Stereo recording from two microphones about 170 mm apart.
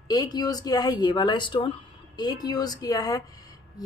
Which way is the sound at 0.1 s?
25° left (ahead or behind).